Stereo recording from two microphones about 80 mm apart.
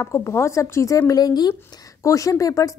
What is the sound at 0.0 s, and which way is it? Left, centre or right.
A woman's voice, left.